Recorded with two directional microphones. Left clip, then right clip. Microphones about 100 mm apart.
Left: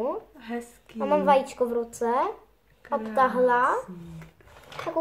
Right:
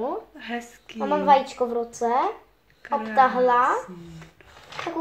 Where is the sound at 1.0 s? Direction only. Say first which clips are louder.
Right 2 dB; 5° right (ahead or behind).